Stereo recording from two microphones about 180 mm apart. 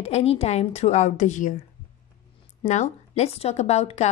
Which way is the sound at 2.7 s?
40° left (ahead or behind).